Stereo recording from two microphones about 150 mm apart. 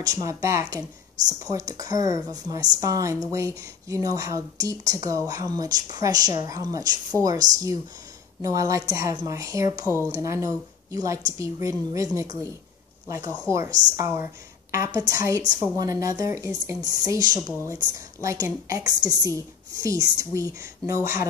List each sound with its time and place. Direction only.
0.0 s speech: 25° right (ahead or behind)
13.4 s speech: 20° right (ahead or behind)